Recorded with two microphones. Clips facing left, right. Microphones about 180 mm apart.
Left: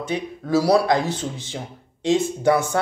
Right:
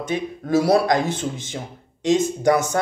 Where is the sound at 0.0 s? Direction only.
50° right (ahead or behind).